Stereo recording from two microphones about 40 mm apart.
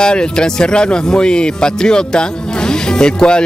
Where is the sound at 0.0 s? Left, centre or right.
Left.